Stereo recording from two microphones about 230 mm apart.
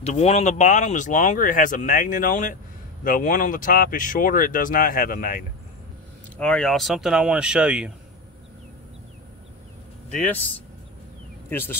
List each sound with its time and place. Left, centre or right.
0.0 s speech: left
6.3 s speech: centre
11.4 s speech: centre